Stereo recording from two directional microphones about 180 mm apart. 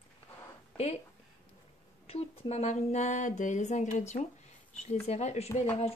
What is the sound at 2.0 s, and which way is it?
Speech, 35° left (ahead or behind).